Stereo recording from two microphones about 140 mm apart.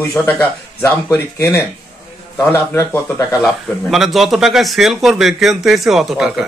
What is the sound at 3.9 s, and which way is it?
Speech, centre (ahead or behind).